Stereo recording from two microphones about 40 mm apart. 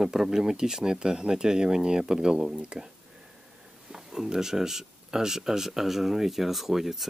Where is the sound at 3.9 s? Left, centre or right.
Centre.